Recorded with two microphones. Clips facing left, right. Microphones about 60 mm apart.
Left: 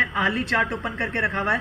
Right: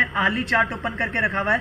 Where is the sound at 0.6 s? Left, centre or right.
Centre.